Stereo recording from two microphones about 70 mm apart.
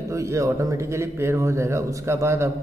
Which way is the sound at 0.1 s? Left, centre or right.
Right.